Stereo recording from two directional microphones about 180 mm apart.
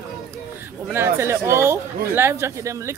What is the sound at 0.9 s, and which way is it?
Speech, 15° right (ahead or behind).